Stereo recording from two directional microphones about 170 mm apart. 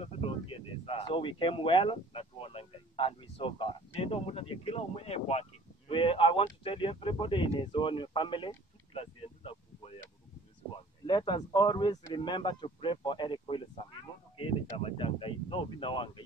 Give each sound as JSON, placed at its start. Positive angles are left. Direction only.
{"t": 0.0, "sound": "speech", "side_deg": 35}
{"t": 11.1, "sound": "speech", "side_deg": 25}